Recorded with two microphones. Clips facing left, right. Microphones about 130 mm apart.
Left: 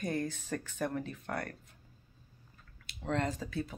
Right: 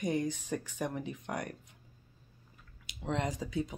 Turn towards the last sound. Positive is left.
turn(degrees=-15)  # may be behind; listen again after turning